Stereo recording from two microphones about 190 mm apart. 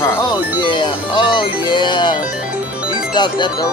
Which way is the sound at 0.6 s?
25° left (ahead or behind).